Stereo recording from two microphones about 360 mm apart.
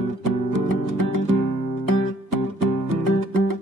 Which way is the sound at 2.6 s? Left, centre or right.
Right.